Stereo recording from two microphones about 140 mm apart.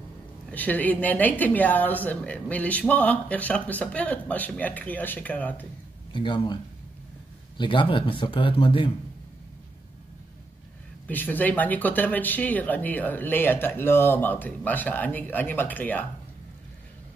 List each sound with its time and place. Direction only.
0.5 s a woman's voice: 10° left (ahead or behind)
6.1 s speech: 35° left (ahead or behind)
11.1 s a woman's voice: 15° left (ahead or behind)